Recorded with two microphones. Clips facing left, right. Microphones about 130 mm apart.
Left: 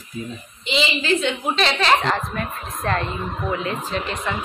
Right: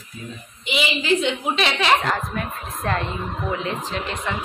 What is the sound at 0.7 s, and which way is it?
A woman's voice, 15° right (ahead or behind).